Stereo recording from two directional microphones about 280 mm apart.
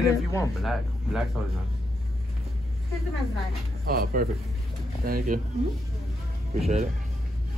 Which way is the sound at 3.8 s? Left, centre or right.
Right.